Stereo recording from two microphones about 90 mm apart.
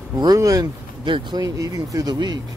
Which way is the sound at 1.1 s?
65° right (ahead or behind).